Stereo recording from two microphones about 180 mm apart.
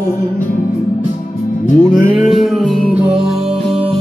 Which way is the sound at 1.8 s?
25° right (ahead or behind).